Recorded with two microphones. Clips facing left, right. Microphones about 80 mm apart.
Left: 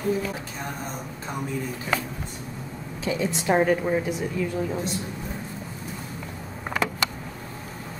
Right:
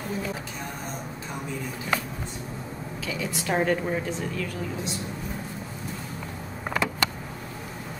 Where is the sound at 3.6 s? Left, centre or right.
Centre.